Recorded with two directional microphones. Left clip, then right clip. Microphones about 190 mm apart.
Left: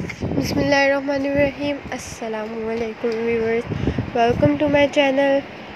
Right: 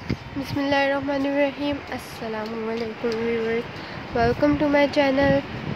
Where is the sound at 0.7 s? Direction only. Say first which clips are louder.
Left 4 dB; 20° left (ahead or behind).